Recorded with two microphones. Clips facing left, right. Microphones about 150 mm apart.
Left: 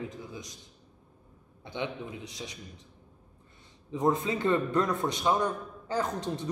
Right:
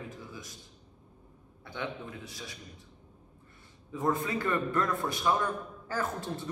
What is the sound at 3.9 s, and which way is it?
A man's voice, 20° left (ahead or behind).